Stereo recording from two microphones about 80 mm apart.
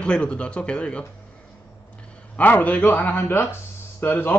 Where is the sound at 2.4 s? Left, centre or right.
Left.